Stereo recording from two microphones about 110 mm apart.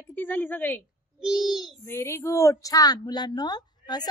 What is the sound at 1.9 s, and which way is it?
A woman's voice, 25° left (ahead or behind).